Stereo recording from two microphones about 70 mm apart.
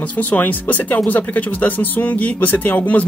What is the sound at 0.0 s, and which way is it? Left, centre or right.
Speech, left.